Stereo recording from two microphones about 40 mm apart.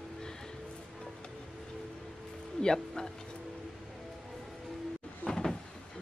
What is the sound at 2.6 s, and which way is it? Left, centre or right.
Speech, centre.